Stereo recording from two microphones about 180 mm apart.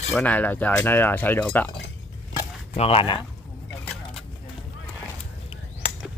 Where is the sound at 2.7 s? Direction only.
30° left (ahead or behind).